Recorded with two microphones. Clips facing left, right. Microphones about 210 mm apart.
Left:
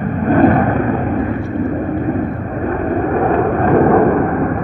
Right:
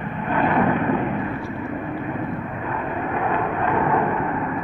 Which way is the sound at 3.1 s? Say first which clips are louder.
Left 8 dB; 45° left (ahead or behind).